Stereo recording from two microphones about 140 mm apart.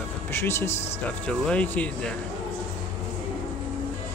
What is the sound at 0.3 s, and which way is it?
A man's voice, 15° left (ahead or behind).